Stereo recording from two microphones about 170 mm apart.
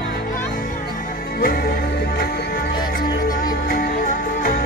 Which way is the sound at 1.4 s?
60° left (ahead or behind).